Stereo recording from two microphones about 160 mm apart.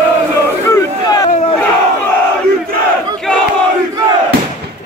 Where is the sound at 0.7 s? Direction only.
25° left (ahead or behind).